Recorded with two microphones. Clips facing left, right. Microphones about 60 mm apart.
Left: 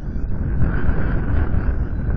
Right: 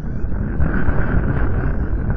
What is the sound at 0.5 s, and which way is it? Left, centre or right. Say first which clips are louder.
Wind noise: right 3 dB; centre.